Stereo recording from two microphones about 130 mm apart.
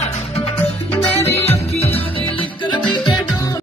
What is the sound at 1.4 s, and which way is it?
Music, 50° left (ahead or behind).